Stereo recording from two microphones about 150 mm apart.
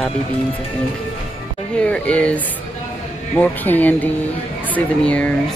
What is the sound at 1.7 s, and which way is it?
Speech, 10° left (ahead or behind).